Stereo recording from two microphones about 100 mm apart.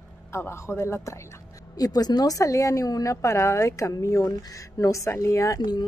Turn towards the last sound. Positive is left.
turn(degrees=45)  # may be behind; listen again after turning